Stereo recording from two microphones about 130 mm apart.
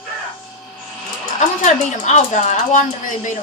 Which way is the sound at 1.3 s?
65° left (ahead or behind).